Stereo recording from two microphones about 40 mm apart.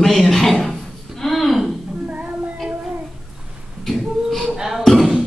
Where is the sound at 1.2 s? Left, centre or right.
Centre.